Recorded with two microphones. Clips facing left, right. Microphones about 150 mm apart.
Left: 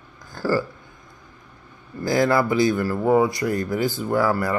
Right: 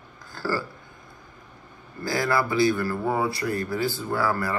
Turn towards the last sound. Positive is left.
turn(degrees=20)  # may be behind; listen again after turning